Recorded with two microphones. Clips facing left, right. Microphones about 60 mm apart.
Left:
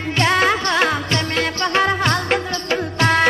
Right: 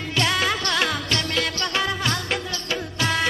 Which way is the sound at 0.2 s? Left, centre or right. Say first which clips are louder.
Left 6 dB; left.